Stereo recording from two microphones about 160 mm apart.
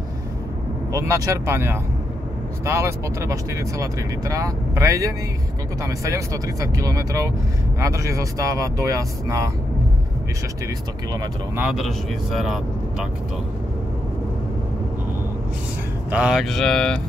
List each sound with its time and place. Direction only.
0.9 s speech: 20° right (ahead or behind)
11.5 s speech: centre (ahead or behind)
16.1 s speech: 5° right (ahead or behind)